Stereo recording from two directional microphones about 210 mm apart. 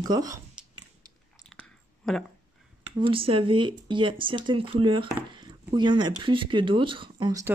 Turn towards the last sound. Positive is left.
turn(degrees=-20)  # may be behind; listen again after turning